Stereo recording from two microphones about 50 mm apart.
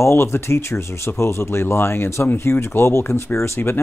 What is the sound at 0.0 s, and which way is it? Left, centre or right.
Speech, left.